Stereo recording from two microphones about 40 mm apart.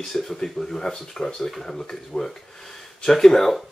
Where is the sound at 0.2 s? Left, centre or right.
Centre.